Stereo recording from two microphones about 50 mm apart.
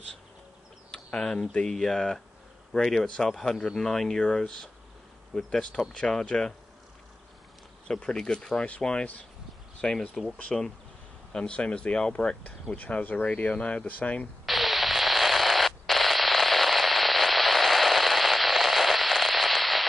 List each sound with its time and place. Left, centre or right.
0.9 s speech: centre
7.9 s speech: centre
9.8 s speech: centre; by 14.2 s left
14.4 s static: centre